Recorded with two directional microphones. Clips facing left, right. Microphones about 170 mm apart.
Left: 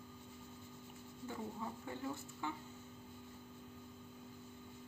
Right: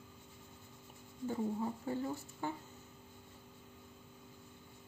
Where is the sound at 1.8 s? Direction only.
35° right (ahead or behind).